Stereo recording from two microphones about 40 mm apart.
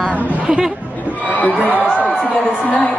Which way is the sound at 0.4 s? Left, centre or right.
Right.